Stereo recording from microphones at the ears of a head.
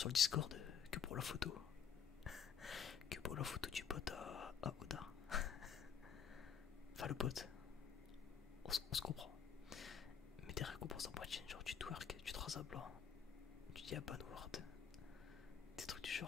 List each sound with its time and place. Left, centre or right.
0.0 s speech: left
3.1 s whispering: left
7.0 s speech: left
8.6 s whispering: left
13.7 s speech: left
15.8 s whispering: left